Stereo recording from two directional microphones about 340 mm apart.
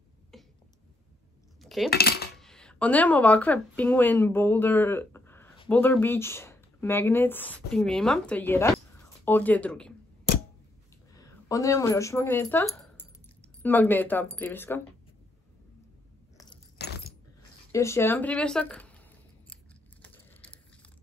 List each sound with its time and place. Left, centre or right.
0.3 s a sound: centre
1.6 s cutlery: centre
1.9 s cutlery: left
2.3 s speech: centre
11.1 s speech: centre
16.7 s keys jangling: left
17.7 s speech: centre
19.5 s scissors: centre